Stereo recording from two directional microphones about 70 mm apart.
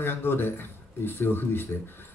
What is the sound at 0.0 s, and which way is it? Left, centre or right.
A man's voice, left.